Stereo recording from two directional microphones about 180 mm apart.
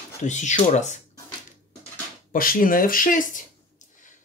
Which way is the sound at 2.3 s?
50° left (ahead or behind).